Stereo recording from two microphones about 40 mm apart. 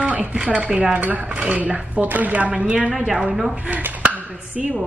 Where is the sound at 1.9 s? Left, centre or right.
Right.